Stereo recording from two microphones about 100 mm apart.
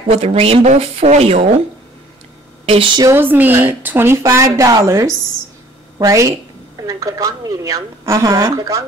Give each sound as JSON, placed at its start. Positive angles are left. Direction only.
{"t": 0.1, "sound": "speech", "side_deg": -85}
{"t": 2.6, "sound": "a woman's voice", "side_deg": -60}
{"t": 3.2, "sound": "a woman's voice", "side_deg": -20}